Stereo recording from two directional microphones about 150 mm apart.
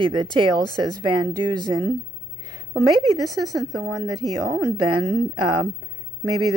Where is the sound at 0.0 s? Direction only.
30° right (ahead or behind).